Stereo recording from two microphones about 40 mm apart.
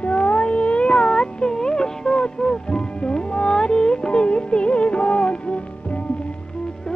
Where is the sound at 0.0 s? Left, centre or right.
Left.